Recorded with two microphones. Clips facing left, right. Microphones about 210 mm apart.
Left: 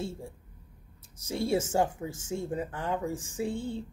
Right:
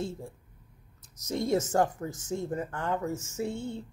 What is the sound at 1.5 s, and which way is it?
Speech, 10° left (ahead or behind).